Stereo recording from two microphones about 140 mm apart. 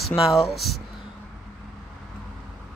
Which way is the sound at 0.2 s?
Centre (ahead or behind).